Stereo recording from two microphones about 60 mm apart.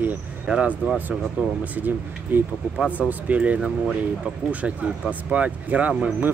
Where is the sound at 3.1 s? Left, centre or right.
Right.